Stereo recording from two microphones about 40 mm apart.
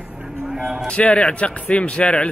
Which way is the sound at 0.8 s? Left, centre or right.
Left.